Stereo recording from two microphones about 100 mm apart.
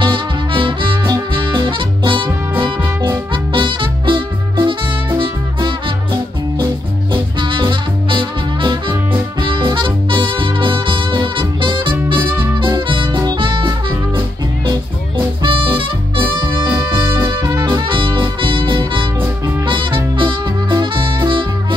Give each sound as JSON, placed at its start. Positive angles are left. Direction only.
{"t": 0.0, "sound": "music", "side_deg": -55}
{"t": 3.5, "sound": "music", "side_deg": -55}
{"t": 7.3, "sound": "music", "side_deg": -55}
{"t": 16.5, "sound": "saxophone", "side_deg": -20}
{"t": 17.6, "sound": "music", "side_deg": -50}